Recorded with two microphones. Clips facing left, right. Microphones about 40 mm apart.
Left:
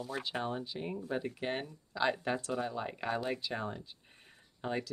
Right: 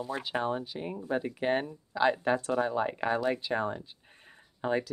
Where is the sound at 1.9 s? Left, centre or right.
Centre.